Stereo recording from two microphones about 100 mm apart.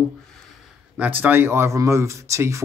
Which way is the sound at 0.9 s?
15° right (ahead or behind).